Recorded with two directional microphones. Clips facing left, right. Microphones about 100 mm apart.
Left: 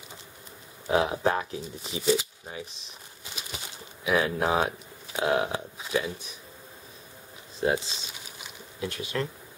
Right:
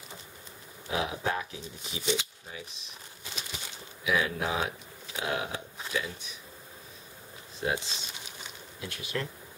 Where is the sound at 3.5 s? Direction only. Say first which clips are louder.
Left 2 dB; 40° left (ahead or behind).